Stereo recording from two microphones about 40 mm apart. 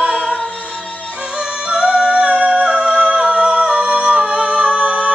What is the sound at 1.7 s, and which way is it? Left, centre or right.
Music, right.